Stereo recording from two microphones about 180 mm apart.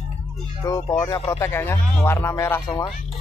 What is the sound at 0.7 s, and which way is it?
Speech, 20° left (ahead or behind).